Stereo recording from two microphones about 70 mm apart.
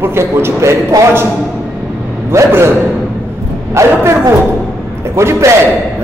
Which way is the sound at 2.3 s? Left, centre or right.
Right.